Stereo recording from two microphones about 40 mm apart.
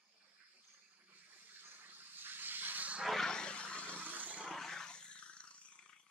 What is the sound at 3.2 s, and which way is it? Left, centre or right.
Vehicle, centre.